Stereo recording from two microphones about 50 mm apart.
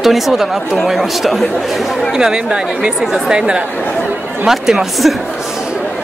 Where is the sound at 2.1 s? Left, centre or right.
Centre.